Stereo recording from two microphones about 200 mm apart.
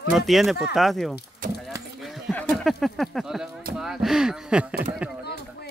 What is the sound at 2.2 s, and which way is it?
Speech, centre (ahead or behind).